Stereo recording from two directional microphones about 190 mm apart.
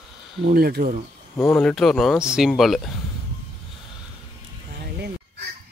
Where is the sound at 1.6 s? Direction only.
Centre (ahead or behind).